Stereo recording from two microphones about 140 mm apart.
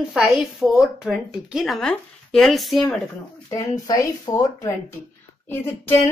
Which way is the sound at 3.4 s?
25° left (ahead or behind).